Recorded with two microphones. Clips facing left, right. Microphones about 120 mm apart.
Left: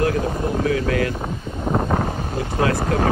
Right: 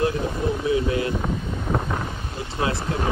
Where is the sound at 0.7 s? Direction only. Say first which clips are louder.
Left 1 dB; 25° right (ahead or behind).